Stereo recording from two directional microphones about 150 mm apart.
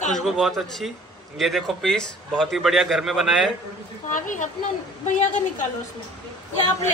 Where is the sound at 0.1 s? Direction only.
Centre (ahead or behind).